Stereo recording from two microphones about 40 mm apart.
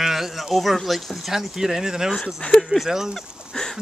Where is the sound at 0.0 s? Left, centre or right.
Centre.